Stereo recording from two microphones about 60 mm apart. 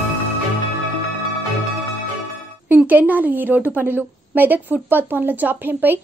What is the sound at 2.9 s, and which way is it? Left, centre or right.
A woman's voice, right.